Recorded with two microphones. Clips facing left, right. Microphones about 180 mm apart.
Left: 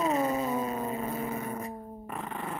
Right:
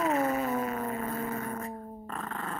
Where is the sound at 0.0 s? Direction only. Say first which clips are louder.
Even; 20° left (ahead or behind).